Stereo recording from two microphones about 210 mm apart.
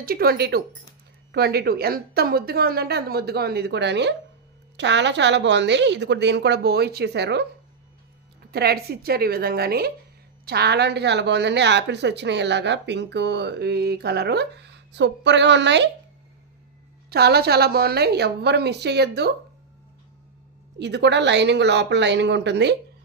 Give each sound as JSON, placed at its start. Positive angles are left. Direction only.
{"t": 0.0, "sound": "a woman's voice", "side_deg": -45}
{"t": 8.5, "sound": "a woman's voice", "side_deg": -50}
{"t": 17.1, "sound": "a woman's voice", "side_deg": -50}
{"t": 20.8, "sound": "a woman's voice", "side_deg": -55}